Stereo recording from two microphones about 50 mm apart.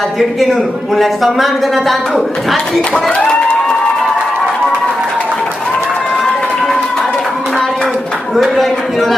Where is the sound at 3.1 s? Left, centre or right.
Centre.